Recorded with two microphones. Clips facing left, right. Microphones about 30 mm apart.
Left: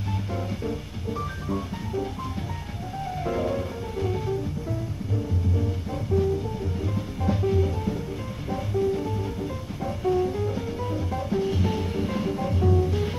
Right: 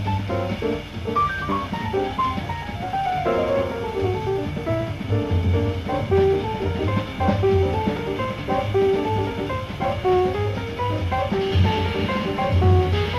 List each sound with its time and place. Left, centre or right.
0.3 s music: right
4.6 s music: right